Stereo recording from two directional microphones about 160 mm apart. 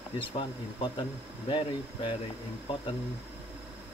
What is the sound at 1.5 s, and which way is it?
Speech, 30° left (ahead or behind).